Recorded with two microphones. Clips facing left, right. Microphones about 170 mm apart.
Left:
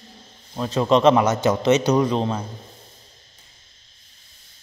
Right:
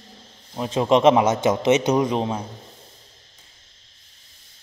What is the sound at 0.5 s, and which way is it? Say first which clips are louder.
A man's voice: even; 15° right (ahead or behind).